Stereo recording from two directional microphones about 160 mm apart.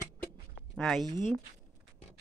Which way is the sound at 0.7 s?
Centre (ahead or behind).